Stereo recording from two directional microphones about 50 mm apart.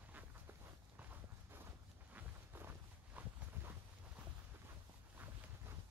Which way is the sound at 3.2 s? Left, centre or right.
Right.